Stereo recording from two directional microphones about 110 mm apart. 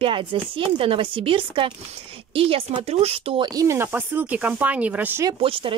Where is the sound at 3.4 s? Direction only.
40° right (ahead or behind).